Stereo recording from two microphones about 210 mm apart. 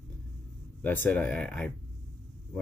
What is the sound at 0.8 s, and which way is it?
Speech, 10° left (ahead or behind).